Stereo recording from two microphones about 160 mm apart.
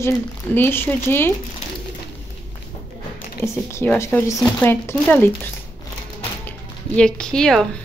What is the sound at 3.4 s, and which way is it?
A woman's voice, 15° left (ahead or behind).